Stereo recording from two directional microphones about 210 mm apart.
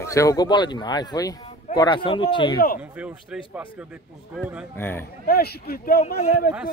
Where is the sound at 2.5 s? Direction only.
45° left (ahead or behind).